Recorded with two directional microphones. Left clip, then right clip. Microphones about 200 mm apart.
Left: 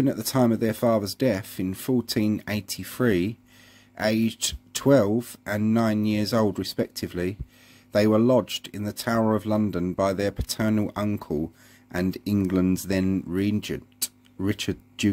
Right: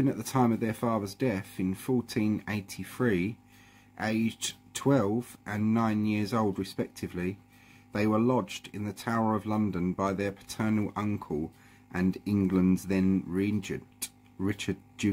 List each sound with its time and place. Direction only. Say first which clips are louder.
0.0 s speech: left 5 dB; 20° left (ahead or behind)